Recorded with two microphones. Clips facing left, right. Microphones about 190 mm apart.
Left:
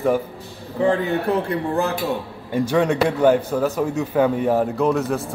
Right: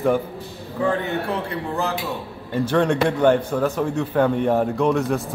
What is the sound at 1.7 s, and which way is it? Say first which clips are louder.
Speech: left 2 dB; 50° left (ahead or behind).